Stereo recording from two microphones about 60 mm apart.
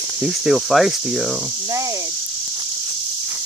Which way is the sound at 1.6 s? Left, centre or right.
Right.